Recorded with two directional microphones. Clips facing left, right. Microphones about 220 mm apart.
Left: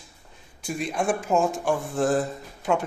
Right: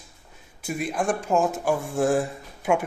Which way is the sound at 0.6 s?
5° right (ahead or behind).